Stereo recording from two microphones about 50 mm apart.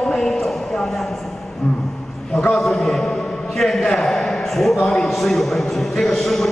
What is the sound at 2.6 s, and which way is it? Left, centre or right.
A man's voice, centre.